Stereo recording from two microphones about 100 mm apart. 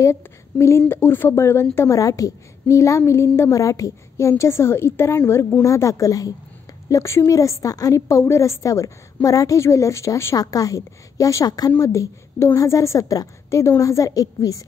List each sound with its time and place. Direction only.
0.0 s a woman's voice: 30° left (ahead or behind)